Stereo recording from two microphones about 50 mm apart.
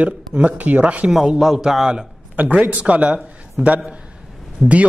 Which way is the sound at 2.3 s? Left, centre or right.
Right.